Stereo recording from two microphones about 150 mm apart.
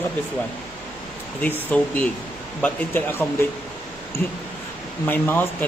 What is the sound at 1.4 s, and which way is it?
Speech, 10° left (ahead or behind).